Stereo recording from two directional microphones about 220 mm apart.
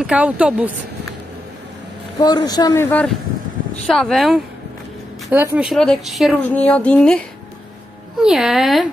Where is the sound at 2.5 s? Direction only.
15° left (ahead or behind).